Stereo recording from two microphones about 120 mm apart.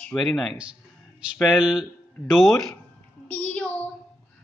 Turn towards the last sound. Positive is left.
turn(degrees=15)  # may be behind; listen again after turning